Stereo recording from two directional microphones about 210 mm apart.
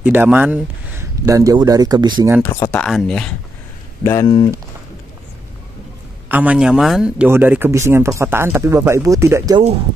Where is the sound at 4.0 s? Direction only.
15° left (ahead or behind).